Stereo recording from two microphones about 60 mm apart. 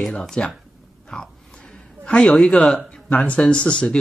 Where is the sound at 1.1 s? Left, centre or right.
Centre.